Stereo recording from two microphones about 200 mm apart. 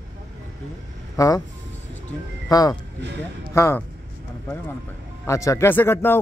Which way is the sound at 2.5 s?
20° left (ahead or behind).